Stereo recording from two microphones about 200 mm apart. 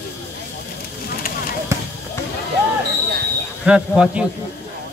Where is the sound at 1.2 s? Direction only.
45° left (ahead or behind).